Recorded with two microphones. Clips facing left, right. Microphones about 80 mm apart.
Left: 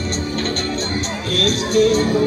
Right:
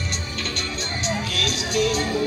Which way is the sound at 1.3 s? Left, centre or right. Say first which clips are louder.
Left 8 dB; left.